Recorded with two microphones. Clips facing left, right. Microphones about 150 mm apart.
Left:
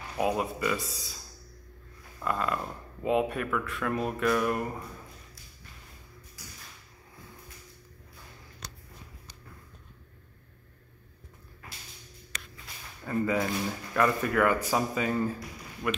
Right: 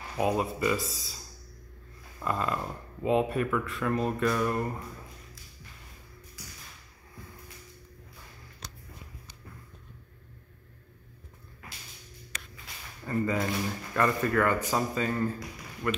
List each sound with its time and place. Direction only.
0.2 s speech: centre (ahead or behind)
2.2 s speech: centre (ahead or behind)
13.0 s speech: 5° left (ahead or behind)